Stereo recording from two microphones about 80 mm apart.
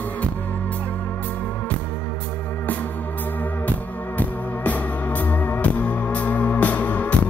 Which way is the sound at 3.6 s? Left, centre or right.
Centre.